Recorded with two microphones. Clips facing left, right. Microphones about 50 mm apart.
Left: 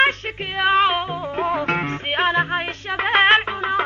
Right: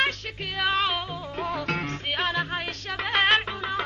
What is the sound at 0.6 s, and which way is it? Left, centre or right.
Music, left.